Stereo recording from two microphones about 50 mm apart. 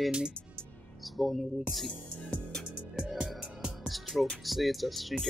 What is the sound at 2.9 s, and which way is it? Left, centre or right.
Music, centre.